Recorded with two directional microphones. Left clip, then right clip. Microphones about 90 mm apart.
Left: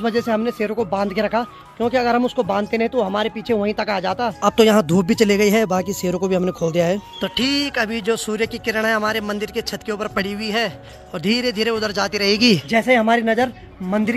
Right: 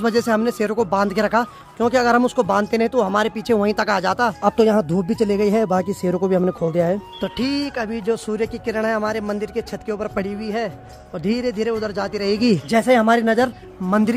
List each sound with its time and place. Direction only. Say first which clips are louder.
0.0 s speech: right 1 dB; 30° right (ahead or behind)
4.4 s speech: left 6 dB; centre (ahead or behind)
5.4 s speech: left 2 dB; 5° right (ahead or behind)
5.7 s speech: right 1 dB; 20° right (ahead or behind)
6.4 s speech: even; 10° right (ahead or behind)
12.6 s speech: even; 35° right (ahead or behind)